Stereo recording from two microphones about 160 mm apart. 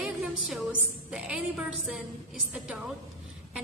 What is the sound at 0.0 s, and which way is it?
A woman's voice, 5° right (ahead or behind).